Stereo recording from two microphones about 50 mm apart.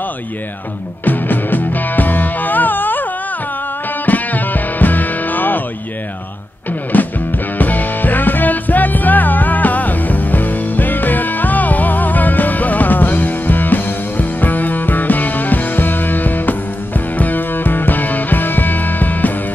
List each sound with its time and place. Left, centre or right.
1.0 s music: left
6.9 s music: left